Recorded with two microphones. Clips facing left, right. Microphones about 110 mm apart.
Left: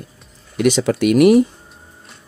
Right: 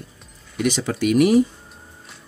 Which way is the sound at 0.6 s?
70° left (ahead or behind).